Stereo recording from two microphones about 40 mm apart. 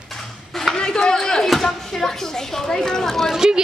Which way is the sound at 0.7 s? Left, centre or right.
Left.